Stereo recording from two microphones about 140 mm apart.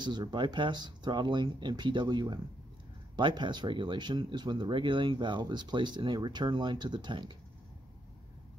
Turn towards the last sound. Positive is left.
turn(degrees=-35)  # may be behind; listen again after turning